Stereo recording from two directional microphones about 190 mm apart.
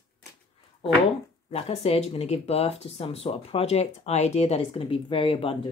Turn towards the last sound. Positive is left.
turn(degrees=30)  # may be behind; listen again after turning